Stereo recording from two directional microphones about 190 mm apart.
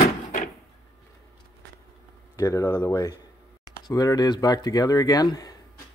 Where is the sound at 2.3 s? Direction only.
15° left (ahead or behind).